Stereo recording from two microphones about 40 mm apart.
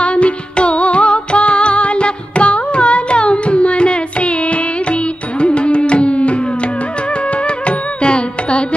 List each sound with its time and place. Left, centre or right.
0.0 s music: left